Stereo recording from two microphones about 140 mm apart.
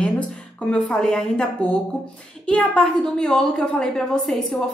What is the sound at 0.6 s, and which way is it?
A woman's voice, 5° left (ahead or behind).